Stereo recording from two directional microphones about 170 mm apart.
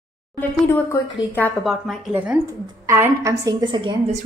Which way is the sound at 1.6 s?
Centre (ahead or behind).